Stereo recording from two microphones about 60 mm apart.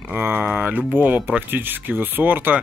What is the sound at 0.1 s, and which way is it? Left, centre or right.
Speech, right.